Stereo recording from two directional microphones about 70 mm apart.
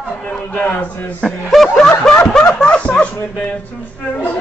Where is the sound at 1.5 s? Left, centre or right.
Centre.